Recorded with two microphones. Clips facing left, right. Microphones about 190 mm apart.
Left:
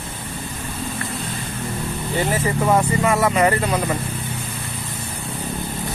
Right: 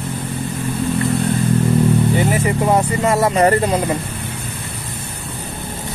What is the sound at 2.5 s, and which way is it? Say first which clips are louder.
Speech: right 2 dB; 20° right (ahead or behind).